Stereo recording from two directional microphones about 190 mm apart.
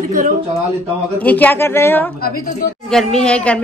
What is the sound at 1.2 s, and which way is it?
Speech, 10° left (ahead or behind).